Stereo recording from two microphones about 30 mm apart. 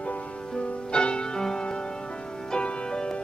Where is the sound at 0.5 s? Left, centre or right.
Left.